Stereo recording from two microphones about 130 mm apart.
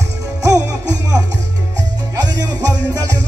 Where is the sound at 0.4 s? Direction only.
25° right (ahead or behind).